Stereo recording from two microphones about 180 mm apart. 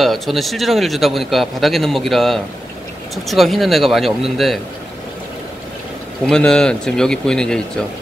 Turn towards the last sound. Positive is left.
turn(degrees=5)  # may be behind; listen again after turning